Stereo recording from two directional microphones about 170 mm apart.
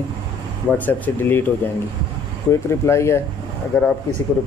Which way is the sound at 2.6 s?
15° left (ahead or behind).